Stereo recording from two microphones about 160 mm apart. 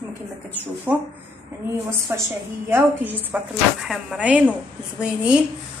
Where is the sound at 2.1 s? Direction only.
20° right (ahead or behind).